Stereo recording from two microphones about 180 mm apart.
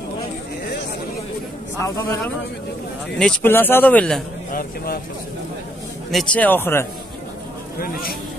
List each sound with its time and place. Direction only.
1.8 s a man's voice: 15° left (ahead or behind)
4.5 s speech: 55° left (ahead or behind)
6.1 s a man's voice: 10° left (ahead or behind)
7.8 s speech: 55° left (ahead or behind)